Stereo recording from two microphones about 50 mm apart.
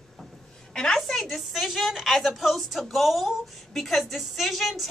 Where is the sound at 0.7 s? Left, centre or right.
Centre.